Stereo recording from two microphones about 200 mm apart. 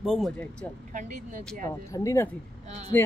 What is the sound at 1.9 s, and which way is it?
Speech, 15° left (ahead or behind).